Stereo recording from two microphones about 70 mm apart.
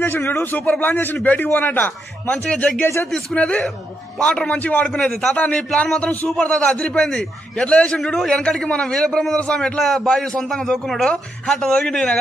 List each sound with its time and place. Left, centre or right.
0.0 s a man's voice: left
2.3 s a man's voice: centre